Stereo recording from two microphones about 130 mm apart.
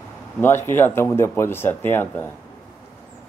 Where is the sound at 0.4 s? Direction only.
20° left (ahead or behind).